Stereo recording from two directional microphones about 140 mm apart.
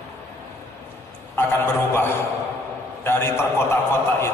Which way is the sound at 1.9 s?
15° left (ahead or behind).